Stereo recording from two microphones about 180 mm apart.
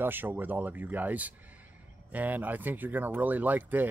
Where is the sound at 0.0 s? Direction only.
10° right (ahead or behind).